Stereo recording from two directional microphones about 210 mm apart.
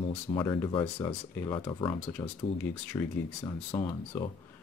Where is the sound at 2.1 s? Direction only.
5° left (ahead or behind).